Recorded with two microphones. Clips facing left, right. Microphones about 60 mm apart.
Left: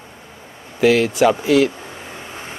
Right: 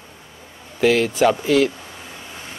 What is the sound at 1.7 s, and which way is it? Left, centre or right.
Vehicle, left.